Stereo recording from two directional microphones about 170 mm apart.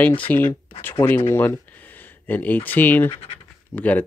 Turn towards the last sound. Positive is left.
turn(degrees=10)  # may be behind; listen again after turning